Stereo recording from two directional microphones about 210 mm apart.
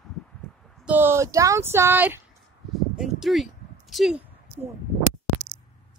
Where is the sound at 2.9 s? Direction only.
Centre (ahead or behind).